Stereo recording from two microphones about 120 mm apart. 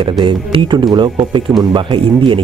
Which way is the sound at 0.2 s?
40° right (ahead or behind).